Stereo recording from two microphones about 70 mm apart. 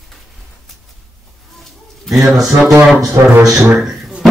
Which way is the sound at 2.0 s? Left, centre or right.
Centre.